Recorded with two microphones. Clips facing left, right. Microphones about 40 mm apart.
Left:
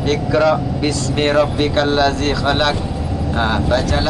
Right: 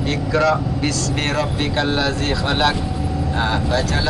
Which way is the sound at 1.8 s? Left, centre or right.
Left.